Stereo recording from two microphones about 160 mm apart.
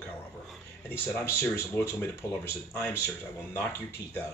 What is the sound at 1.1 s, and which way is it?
Speech, 15° left (ahead or behind).